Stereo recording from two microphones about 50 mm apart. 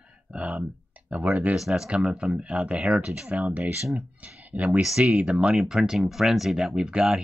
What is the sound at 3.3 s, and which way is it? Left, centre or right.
Speech, right.